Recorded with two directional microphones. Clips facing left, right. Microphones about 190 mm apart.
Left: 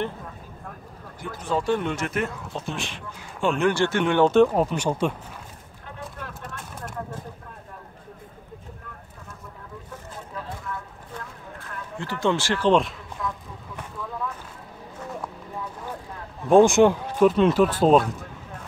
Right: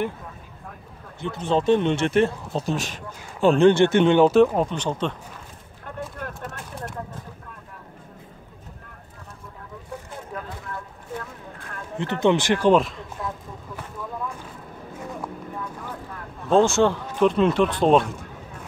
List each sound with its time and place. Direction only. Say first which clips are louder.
1.2 s speech: right 4 dB; 25° right (ahead or behind)
4.5 s speech: left 1 dB; 5° left (ahead or behind)
5.9 s a sound: right 4 dB; 50° right (ahead or behind)
12.0 s speech: right 4 dB; 20° right (ahead or behind)
16.4 s speech: left 3 dB; 15° left (ahead or behind)
17.3 s speech: left 1 dB; centre (ahead or behind)